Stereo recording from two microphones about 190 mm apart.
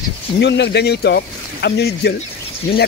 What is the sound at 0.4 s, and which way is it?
Speech, 65° left (ahead or behind).